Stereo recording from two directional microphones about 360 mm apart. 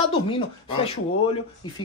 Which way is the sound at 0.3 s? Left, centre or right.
Centre.